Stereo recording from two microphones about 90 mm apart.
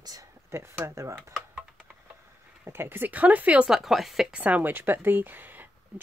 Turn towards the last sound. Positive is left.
turn(degrees=-20)  # may be behind; listen again after turning